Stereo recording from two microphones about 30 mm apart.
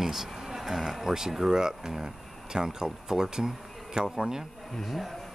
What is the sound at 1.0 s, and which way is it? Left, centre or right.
Speech, centre.